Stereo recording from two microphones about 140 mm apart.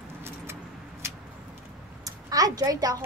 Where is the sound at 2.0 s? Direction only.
25° right (ahead or behind).